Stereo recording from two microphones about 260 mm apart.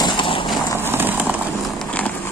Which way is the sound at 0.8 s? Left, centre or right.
Centre.